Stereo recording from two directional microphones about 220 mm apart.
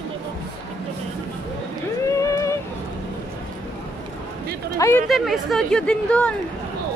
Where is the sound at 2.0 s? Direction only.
15° left (ahead or behind).